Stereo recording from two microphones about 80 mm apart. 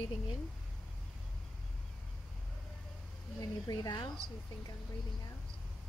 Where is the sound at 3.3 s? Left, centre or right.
Left.